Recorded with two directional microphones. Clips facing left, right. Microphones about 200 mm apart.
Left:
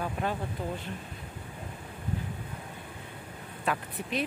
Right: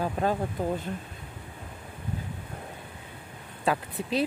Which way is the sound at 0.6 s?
40° right (ahead or behind).